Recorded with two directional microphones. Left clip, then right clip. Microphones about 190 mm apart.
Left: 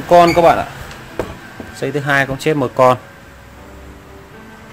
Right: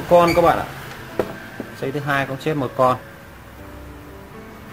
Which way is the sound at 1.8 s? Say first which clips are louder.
Left 6 dB; 45° left (ahead or behind).